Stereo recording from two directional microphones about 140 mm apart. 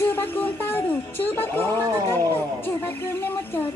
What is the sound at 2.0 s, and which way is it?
Speech, 25° right (ahead or behind).